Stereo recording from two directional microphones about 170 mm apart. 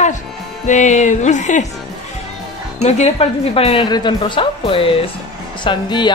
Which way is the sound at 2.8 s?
40° left (ahead or behind).